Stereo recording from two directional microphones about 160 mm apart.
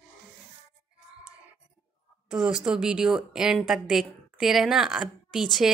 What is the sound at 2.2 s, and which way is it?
A woman's voice, 5° right (ahead or behind).